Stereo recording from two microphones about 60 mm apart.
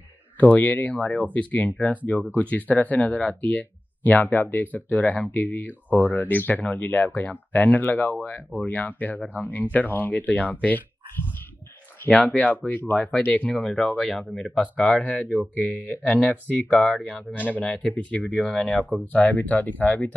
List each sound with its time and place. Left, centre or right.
0.4 s speech: left
12.1 s speech: left
13.6 s speech: centre
14.8 s speech: left